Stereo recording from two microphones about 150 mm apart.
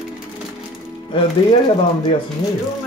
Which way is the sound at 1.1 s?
35° left (ahead or behind).